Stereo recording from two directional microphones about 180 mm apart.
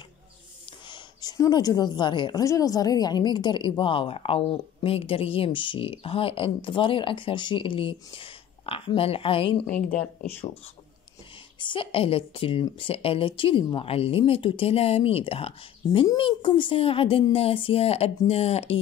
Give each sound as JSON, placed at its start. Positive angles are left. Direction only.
{"t": 0.7, "sound": "a woman's voice", "side_deg": 25}
{"t": 11.6, "sound": "speech", "side_deg": 30}